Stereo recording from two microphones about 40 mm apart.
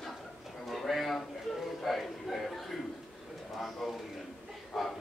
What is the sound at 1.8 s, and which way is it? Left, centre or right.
Music, centre.